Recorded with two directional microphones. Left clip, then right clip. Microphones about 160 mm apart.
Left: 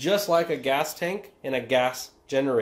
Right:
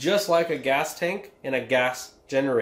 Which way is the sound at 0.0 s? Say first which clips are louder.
Right 1 dB; 35° left (ahead or behind).